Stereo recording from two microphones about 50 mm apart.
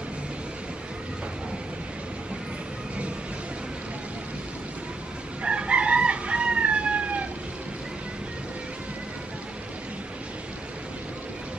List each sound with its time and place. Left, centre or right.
5.4 s chicken: right